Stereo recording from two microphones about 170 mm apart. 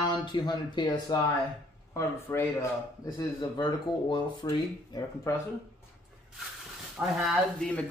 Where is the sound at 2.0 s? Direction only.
15° left (ahead or behind).